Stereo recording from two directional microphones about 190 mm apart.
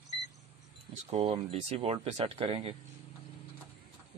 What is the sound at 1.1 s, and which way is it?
Speech, 30° right (ahead or behind).